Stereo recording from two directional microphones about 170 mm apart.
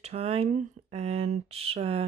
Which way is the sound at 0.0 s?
40° right (ahead or behind).